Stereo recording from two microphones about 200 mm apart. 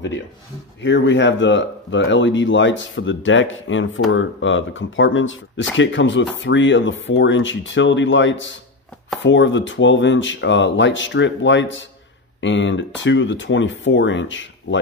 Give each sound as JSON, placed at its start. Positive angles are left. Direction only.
{"t": 0.8, "sound": "speech", "side_deg": 65}